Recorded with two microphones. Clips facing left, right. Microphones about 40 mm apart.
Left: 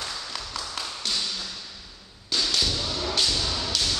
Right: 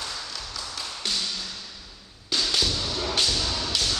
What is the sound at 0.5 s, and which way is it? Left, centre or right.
Tap, left.